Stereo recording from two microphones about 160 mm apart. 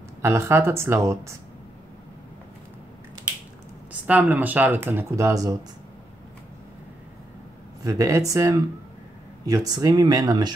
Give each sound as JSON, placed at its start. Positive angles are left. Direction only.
{"t": 0.2, "sound": "speech", "side_deg": -15}
{"t": 3.9, "sound": "speech", "side_deg": -10}
{"t": 7.8, "sound": "speech", "side_deg": -20}